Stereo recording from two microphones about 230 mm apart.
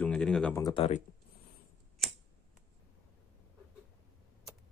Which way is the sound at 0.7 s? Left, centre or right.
Left.